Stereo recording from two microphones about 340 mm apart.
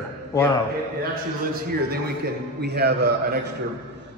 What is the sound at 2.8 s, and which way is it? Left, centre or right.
Speech, right.